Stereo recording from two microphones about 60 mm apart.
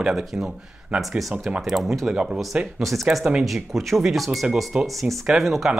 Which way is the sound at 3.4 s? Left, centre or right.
Centre.